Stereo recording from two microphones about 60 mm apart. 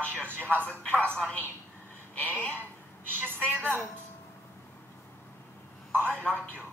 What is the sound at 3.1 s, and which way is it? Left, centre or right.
Speech, right.